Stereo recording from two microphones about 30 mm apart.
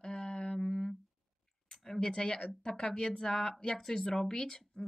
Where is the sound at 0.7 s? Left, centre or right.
Centre.